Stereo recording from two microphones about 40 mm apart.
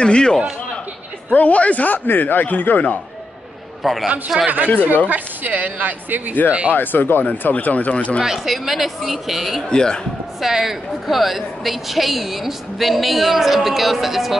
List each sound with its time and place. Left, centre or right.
0.0 s a man's voice: left
1.3 s a woman's voice: left
2.0 s speech: left
3.8 s a woman's voice: centre
5.0 s speech: right
6.7 s speech: left
7.2 s a woman's voice: left
8.2 s a woman's voice: centre
9.7 s a man's voice: centre
10.4 s a woman's voice: centre